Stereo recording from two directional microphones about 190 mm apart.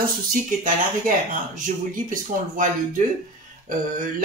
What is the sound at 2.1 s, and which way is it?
Speech, 45° right (ahead or behind).